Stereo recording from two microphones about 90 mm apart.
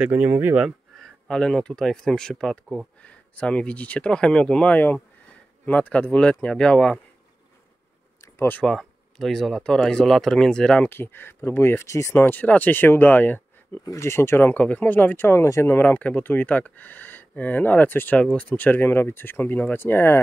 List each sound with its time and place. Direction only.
0.1 s speech: 25° right (ahead or behind)
0.7 s speech: 5° left (ahead or behind)
8.4 s speech: 20° left (ahead or behind)
8.6 s speech: 5° left (ahead or behind)
10.9 s speech: 25° left (ahead or behind)
13.8 s speech: 30° left (ahead or behind)